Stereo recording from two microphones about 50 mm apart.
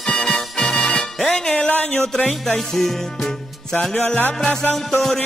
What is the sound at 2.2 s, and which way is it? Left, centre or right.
Music, centre.